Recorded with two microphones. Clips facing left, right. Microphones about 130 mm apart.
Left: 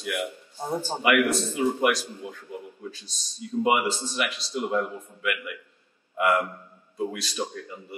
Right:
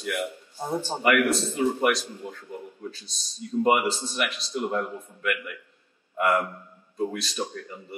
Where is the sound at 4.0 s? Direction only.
10° left (ahead or behind).